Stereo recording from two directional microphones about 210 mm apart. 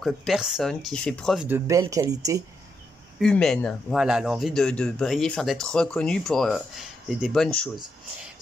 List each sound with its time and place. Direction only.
0.0 s speech: centre (ahead or behind)
1.7 s speech: 15° right (ahead or behind)
3.2 s speech: centre (ahead or behind)